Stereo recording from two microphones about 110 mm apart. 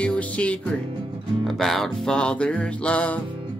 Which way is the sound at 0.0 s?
10° left (ahead or behind).